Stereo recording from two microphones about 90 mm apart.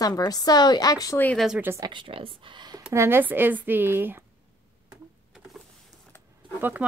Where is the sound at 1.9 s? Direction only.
90° right; by 2.8 s 60° right (ahead or behind).